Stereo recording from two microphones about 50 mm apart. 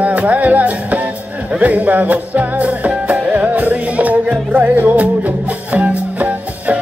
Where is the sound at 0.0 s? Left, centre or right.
Right.